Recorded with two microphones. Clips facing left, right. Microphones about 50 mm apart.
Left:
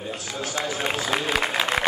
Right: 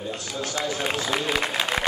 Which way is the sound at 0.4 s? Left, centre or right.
Centre.